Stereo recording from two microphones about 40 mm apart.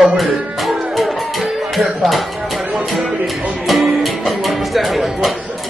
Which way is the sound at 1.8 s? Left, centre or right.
Centre.